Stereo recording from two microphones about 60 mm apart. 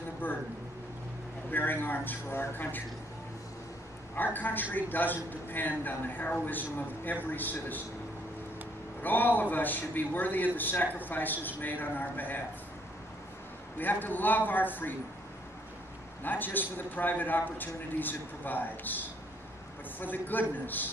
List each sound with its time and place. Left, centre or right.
0.2 s speech: left
1.5 s a man's voice: left
4.1 s a man's voice: left
9.0 s a man's voice: left
13.7 s a man's voice: left
16.2 s a man's voice: left
20.0 s a man's voice: left